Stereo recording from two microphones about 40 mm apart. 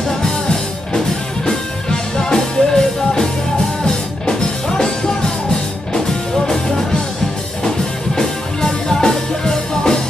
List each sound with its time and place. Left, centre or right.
0.2 s music: centre
8.2 s music: centre